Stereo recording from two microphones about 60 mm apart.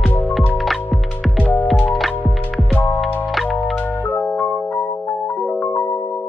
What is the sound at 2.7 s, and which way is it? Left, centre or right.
Music, left.